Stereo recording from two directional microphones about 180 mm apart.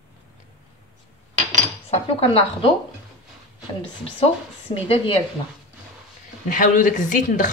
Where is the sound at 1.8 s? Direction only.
35° left (ahead or behind).